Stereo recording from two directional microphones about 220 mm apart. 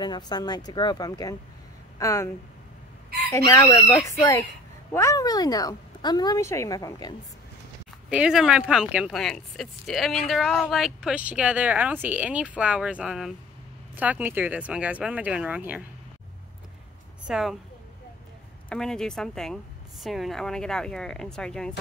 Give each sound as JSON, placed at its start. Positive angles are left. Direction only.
{"t": 0.0, "sound": "speech", "side_deg": 20}
{"t": 8.1, "sound": "speech", "side_deg": -5}
{"t": 17.3, "sound": "speech", "side_deg": 0}
{"t": 18.7, "sound": "speech", "side_deg": 5}